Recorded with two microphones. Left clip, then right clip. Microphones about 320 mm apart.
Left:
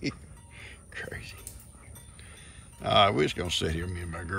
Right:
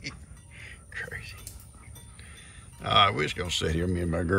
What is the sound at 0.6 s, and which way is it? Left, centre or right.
Music, centre.